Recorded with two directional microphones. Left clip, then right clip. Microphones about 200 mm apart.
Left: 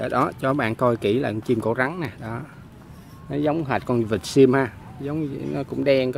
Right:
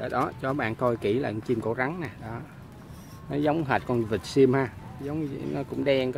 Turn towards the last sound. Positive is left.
turn(degrees=20)  # may be behind; listen again after turning